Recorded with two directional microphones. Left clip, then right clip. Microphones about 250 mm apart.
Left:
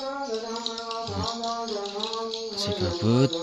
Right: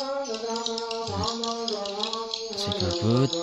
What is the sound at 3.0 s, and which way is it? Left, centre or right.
Speech, centre.